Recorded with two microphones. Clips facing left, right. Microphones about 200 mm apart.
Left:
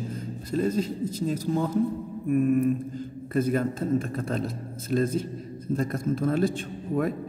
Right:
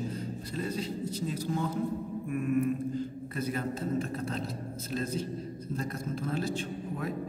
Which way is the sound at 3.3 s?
50° left (ahead or behind).